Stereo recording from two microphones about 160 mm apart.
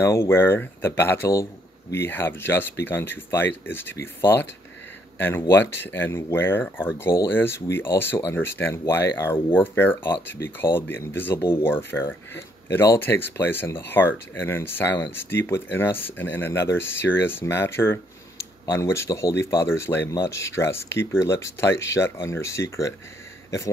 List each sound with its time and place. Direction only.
0.0 s speech: 15° left (ahead or behind)